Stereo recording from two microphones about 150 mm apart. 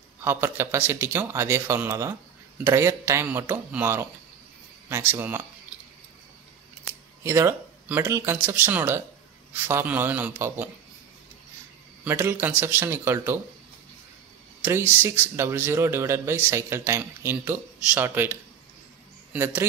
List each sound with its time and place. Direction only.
0.2 s a man's voice: 15° right (ahead or behind)
7.2 s a man's voice: 15° right (ahead or behind)
12.0 s a man's voice: 15° right (ahead or behind)
14.6 s a man's voice: 15° right (ahead or behind)